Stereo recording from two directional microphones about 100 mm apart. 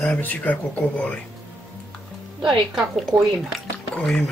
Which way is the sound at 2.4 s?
5° right (ahead or behind).